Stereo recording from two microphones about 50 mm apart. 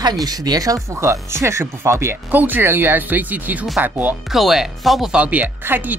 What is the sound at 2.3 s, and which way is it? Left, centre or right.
Speech, right.